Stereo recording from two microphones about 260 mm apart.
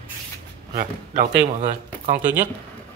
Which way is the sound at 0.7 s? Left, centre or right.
Right.